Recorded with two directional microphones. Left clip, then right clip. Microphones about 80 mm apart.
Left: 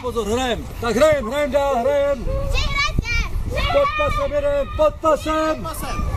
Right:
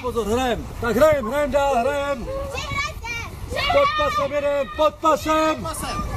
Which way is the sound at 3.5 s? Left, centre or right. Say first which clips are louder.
Even; right.